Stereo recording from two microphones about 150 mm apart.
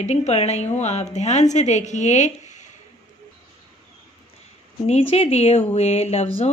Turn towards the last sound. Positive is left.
turn(degrees=45)  # may be behind; listen again after turning